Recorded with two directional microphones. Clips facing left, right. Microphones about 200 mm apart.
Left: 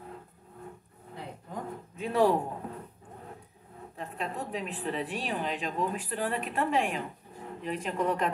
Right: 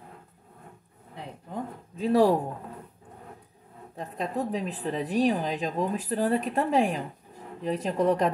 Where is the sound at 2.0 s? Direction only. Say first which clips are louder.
Right 5 dB; 35° right (ahead or behind).